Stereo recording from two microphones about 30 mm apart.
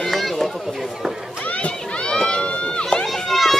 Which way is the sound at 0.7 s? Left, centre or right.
Centre.